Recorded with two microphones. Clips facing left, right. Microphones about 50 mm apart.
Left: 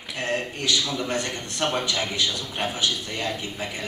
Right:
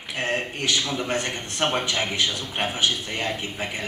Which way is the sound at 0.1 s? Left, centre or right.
Centre.